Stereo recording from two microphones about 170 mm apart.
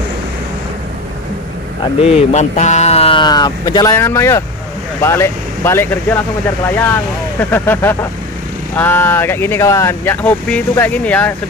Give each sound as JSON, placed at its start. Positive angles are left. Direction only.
{"t": 2.1, "sound": "speech", "side_deg": 40}